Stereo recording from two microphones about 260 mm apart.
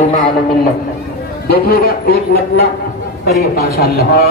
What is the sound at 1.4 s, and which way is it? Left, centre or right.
Speech, left.